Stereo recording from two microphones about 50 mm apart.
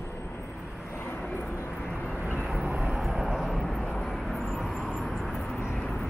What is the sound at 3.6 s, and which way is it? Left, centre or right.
Vehicle, centre.